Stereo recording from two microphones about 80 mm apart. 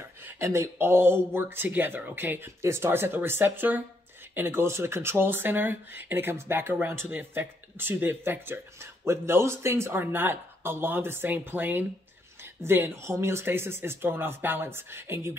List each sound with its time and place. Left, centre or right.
0.4 s speech: right